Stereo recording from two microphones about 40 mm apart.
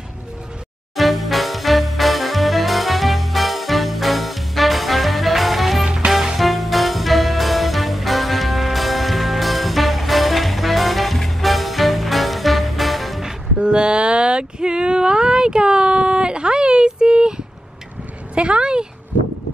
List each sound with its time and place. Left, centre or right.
0.9 s music: centre
5.9 s music: centre
6.3 s music: centre
13.6 s a sound: right